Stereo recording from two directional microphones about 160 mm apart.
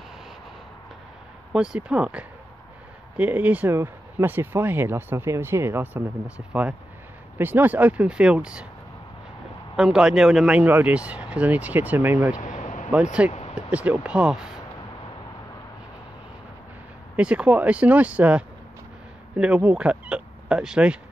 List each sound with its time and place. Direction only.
1.5 s speech: 5° right (ahead or behind)
9.8 s speech: 5° right (ahead or behind)
12.4 s a sound: 45° left (ahead or behind)
12.9 s speech: 5° right (ahead or behind)
13.3 s a sound: 40° left (ahead or behind)
13.6 s speech: 10° right (ahead or behind)
17.2 s speech: 5° right (ahead or behind)